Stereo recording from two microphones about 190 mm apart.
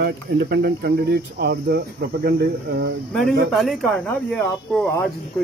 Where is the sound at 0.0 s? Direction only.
65° right (ahead or behind).